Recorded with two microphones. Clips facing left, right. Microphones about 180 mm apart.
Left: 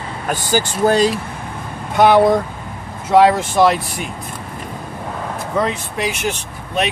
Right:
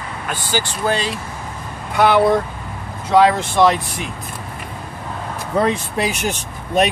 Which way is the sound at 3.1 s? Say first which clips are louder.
Left 2 dB; 5° left (ahead or behind).